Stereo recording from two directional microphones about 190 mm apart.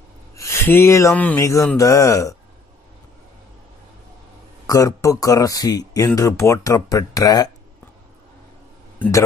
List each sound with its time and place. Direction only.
0.4 s speech: 15° left (ahead or behind)
4.6 s speech: 15° left (ahead or behind)